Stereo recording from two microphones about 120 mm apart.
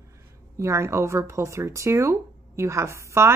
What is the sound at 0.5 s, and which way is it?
Speech, 25° right (ahead or behind).